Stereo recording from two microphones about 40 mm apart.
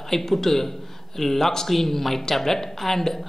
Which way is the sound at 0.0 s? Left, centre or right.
Centre.